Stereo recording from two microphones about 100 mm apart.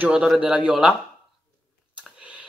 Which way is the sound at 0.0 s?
10° right (ahead or behind).